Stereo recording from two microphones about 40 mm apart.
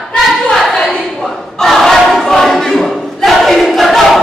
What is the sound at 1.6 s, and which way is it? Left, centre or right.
Crowd, centre.